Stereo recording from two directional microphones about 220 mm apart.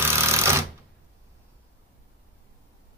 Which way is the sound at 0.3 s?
10° right (ahead or behind).